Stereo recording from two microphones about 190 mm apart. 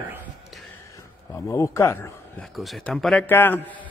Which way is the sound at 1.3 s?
15° left (ahead or behind).